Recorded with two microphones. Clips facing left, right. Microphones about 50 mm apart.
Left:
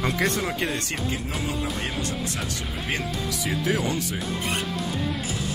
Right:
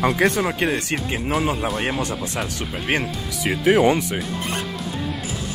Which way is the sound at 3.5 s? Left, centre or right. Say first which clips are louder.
Right 10 dB; right.